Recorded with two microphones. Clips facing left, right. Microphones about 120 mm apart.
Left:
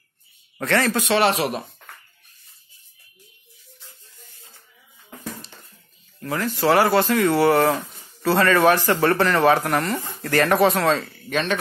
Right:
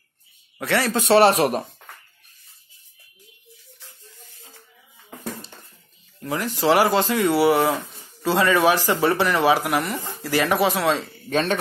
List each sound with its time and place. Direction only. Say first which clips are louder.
0.6 s a man's voice: left 1 dB; 10° right (ahead or behind)
1.0 s speech: right 4 dB; 40° right (ahead or behind)
6.2 s speech: even; 15° right (ahead or behind)
11.1 s speech: right 2 dB; 35° right (ahead or behind)